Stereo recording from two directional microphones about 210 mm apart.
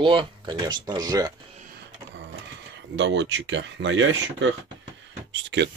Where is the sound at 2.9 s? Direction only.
60° right (ahead or behind).